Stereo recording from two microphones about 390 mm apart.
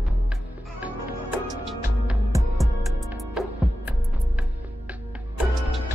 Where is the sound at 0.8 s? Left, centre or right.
Centre.